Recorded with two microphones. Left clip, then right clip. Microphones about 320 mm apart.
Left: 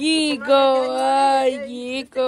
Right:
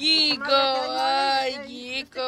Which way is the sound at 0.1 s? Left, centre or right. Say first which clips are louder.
Left 3 dB; centre.